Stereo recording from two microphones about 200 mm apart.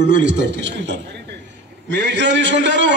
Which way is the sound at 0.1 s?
65° right (ahead or behind).